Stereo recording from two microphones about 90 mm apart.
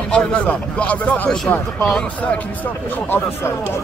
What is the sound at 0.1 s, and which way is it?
Speech, 10° left (ahead or behind).